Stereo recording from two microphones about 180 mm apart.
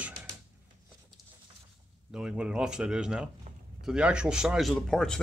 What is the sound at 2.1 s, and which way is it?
Speech, 5° right (ahead or behind).